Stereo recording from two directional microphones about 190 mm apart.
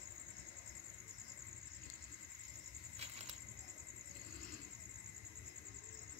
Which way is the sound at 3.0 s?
35° right (ahead or behind).